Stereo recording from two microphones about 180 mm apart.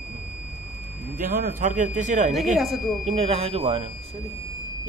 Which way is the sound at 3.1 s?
35° right (ahead or behind).